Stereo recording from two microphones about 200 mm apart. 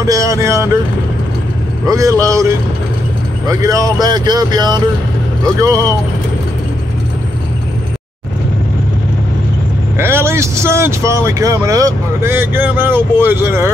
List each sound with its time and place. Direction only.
0.0 s a man's voice: 15° right (ahead or behind)
1.9 s a man's voice: 15° right (ahead or behind)
3.4 s a man's voice: 15° right (ahead or behind)
9.9 s a man's voice: 10° right (ahead or behind)